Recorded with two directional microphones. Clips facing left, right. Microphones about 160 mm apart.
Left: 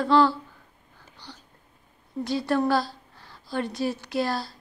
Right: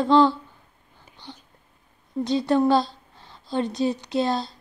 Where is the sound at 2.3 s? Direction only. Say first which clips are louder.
Right 4 dB; 20° right (ahead or behind).